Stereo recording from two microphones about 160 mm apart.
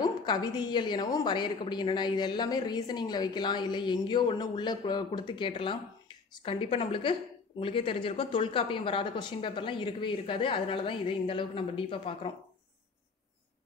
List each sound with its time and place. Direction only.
0.0 s a woman's voice: 25° left (ahead or behind)